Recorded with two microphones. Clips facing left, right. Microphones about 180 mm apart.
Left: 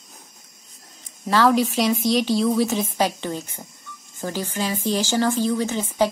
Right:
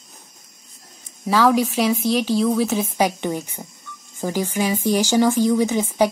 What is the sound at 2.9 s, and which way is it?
Speech, 15° right (ahead or behind).